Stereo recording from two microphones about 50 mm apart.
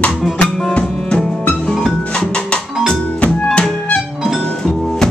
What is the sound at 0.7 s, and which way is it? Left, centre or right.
Music, centre.